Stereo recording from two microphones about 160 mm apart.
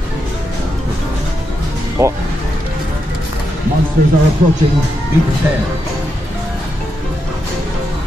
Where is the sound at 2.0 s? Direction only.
15° right (ahead or behind).